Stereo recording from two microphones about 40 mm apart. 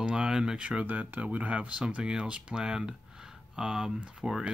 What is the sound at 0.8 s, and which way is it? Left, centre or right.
Speech, right.